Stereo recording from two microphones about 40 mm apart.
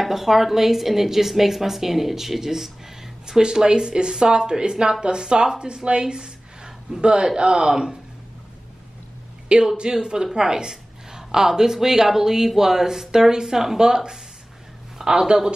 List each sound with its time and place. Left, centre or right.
0.0 s a woman's voice: centre
9.5 s speech: right
10.0 s a woman's voice: centre